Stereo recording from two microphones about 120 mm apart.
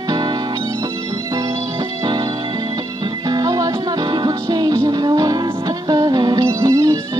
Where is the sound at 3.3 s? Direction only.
30° right (ahead or behind).